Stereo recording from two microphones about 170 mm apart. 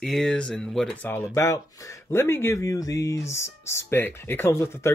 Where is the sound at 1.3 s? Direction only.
15° left (ahead or behind).